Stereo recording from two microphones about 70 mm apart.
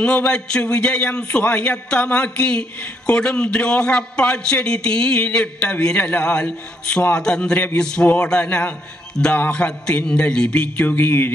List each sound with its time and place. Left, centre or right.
0.0 s a man's voice: centre
7.5 s music: left
7.8 s a man's voice: centre
9.2 s music: centre